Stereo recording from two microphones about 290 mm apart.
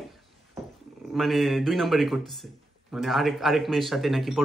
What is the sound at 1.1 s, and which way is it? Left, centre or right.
Speech, centre.